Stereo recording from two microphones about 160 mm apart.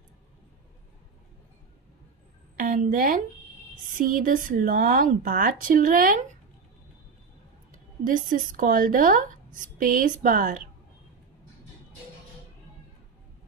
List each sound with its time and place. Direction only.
2.5 s a woman's voice: 55° right (ahead or behind)
7.7 s speech: 60° right (ahead or behind)